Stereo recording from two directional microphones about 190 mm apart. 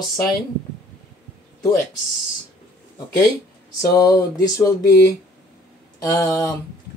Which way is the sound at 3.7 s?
20° left (ahead or behind).